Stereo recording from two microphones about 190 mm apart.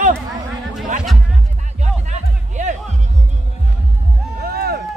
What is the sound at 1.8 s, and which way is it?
Music, 40° right (ahead or behind).